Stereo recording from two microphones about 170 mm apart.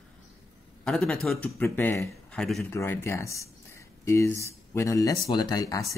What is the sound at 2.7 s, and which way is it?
Speech, 15° left (ahead or behind).